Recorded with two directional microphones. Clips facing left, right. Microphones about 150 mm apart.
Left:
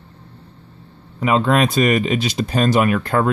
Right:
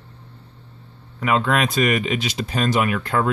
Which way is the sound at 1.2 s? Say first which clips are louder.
Left 4 dB; 30° left (ahead or behind).